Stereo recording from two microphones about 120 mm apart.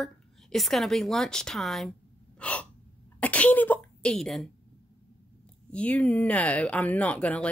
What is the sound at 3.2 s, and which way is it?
Speech, 10° left (ahead or behind).